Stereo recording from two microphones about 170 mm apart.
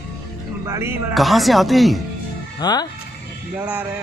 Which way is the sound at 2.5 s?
25° left (ahead or behind).